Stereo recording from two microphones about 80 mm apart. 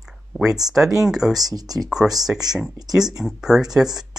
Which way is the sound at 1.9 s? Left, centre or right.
Centre.